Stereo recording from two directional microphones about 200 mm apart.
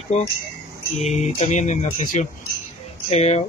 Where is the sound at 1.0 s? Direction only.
35° left (ahead or behind).